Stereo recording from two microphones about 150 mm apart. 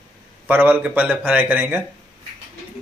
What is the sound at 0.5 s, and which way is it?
A man's voice, 10° right (ahead or behind).